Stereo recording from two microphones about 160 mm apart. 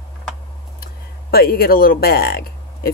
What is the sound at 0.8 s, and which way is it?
Speech, 70° left (ahead or behind).